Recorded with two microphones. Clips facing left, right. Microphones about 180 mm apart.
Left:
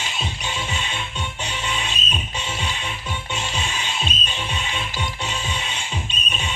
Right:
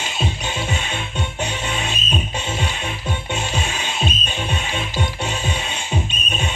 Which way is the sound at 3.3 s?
50° right (ahead or behind).